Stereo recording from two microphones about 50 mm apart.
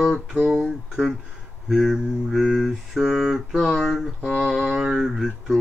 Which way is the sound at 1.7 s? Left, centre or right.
Centre.